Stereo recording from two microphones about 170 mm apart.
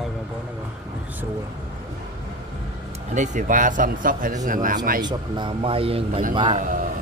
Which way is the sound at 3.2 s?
50° right (ahead or behind).